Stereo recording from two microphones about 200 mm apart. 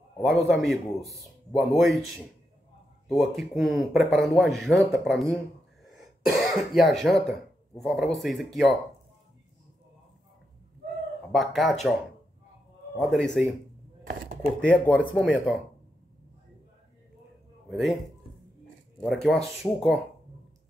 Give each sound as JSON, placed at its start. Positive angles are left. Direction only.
{"t": 0.5, "sound": "speech", "side_deg": 0}
{"t": 11.3, "sound": "speech", "side_deg": 0}
{"t": 14.0, "sound": "a sound", "side_deg": -45}
{"t": 14.7, "sound": "speech", "side_deg": 5}
{"t": 17.6, "sound": "speech", "side_deg": 0}
{"t": 19.0, "sound": "speech", "side_deg": 5}